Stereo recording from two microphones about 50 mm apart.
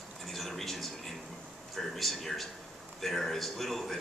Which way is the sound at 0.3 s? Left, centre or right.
Centre.